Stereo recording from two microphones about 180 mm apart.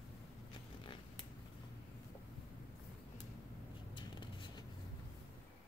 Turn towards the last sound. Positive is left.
turn(degrees=25)  # may be behind; listen again after turning